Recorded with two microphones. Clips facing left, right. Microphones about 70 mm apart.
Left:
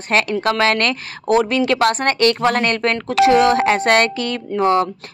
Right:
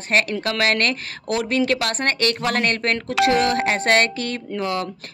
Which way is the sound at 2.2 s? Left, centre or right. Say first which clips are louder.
Left 7 dB; left.